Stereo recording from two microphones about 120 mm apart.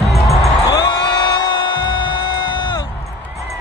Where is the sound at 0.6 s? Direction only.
35° left (ahead or behind).